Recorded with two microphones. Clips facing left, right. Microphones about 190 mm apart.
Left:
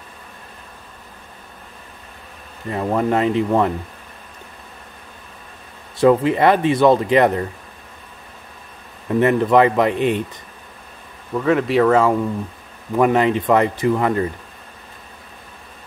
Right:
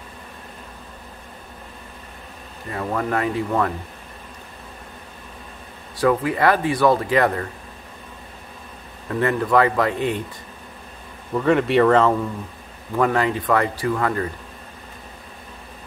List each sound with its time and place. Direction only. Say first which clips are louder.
2.7 s speech: left 5 dB; 25° left (ahead or behind)
5.9 s speech: left 5 dB; 25° left (ahead or behind)
9.1 s speech: left 4 dB; 20° left (ahead or behind)
11.3 s speech: even; centre (ahead or behind)
12.9 s speech: left 4 dB; 20° left (ahead or behind)